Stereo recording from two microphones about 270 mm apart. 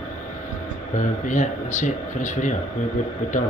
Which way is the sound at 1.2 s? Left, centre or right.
Left.